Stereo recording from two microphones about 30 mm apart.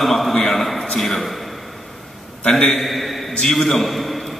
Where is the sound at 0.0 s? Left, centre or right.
Centre.